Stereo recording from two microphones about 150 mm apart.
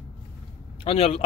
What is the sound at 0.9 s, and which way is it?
Speech, 40° left (ahead or behind).